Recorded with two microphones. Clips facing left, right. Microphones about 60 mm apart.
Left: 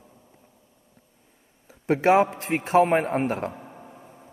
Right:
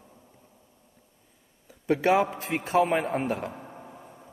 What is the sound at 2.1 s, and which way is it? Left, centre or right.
A man's voice, left.